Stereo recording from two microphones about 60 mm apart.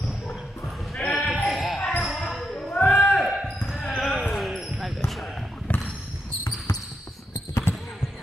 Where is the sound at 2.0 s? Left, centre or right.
Centre.